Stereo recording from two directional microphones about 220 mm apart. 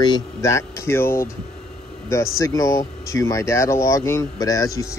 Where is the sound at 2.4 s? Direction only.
15° left (ahead or behind).